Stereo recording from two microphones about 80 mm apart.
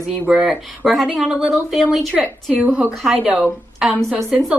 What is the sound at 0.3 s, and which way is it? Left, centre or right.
Speech, centre.